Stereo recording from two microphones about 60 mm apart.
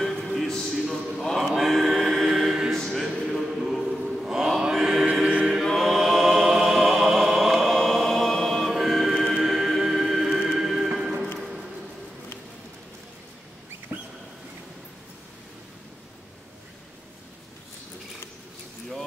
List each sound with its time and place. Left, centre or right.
0.0 s a sound: centre
1.6 s chant: centre
4.6 s mantra: centre
5.0 s music: centre
5.8 s music: centre
11.3 s a sound: centre
13.9 s rodents: right